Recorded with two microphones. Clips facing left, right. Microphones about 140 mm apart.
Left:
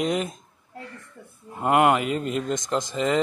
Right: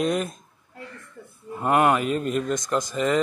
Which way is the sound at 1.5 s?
20° left (ahead or behind).